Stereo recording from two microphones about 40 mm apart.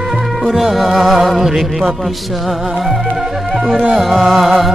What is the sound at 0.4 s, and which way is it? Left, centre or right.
Music, centre.